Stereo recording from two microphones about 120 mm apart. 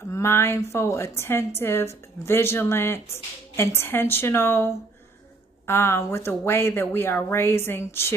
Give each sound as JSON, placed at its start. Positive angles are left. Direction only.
{"t": 0.1, "sound": "a woman's voice", "side_deg": 20}
{"t": 5.7, "sound": "a woman's voice", "side_deg": 20}